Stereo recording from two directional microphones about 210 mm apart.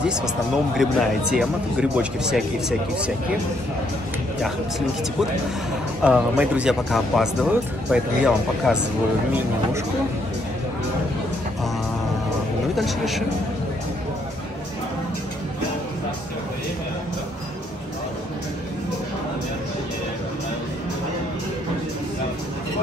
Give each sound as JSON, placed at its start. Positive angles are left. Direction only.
{"t": 0.7, "sound": "speech", "side_deg": 0}
{"t": 4.4, "sound": "speech", "side_deg": 0}
{"t": 12.7, "sound": "speech", "side_deg": 0}